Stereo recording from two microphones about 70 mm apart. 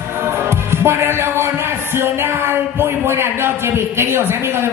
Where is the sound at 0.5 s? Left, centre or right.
Right.